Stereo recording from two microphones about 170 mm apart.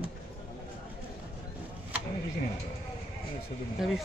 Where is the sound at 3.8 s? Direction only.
Centre (ahead or behind).